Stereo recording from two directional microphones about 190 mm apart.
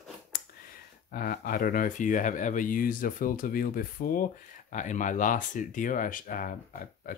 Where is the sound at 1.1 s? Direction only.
50° left (ahead or behind).